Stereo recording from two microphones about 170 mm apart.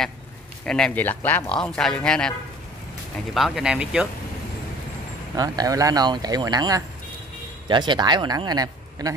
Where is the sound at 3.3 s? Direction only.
Centre (ahead or behind).